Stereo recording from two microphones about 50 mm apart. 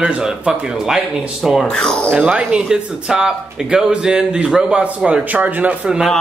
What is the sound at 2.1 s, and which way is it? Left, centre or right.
Speech, right.